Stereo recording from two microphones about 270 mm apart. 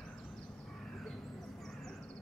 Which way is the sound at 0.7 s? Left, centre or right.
Centre.